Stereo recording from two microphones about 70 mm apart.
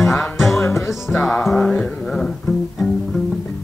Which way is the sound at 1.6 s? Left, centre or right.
Centre.